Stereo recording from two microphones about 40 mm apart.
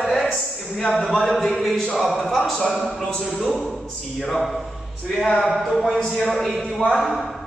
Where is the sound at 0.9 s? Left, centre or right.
Centre.